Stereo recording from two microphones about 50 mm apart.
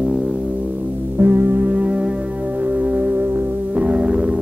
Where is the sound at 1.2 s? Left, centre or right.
Right.